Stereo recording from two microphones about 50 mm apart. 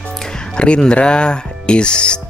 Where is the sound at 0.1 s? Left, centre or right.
Centre.